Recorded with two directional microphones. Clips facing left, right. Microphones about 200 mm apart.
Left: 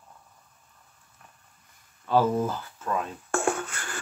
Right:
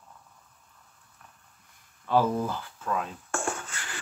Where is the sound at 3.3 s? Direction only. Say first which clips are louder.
Left 6 dB; 60° left (ahead or behind).